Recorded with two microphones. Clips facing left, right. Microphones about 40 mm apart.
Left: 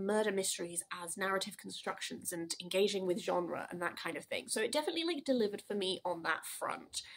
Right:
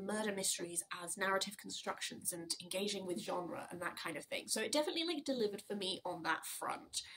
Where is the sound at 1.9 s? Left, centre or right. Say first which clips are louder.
Left 3 dB; left.